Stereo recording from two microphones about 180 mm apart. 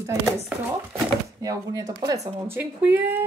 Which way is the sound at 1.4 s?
20° right (ahead or behind).